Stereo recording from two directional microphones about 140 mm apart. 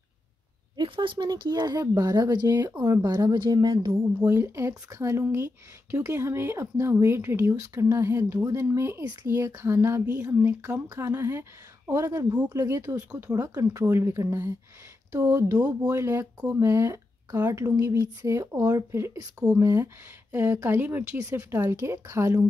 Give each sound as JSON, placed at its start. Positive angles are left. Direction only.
{"t": 0.7, "sound": "speech", "side_deg": -35}